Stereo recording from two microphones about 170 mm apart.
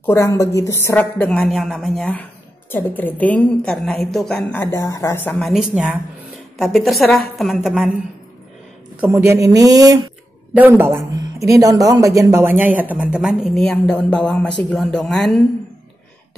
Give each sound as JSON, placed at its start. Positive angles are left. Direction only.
{"t": 0.0, "sound": "a woman's voice", "side_deg": 15}
{"t": 5.4, "sound": "a woman's voice", "side_deg": -5}
{"t": 9.0, "sound": "a woman's voice", "side_deg": -15}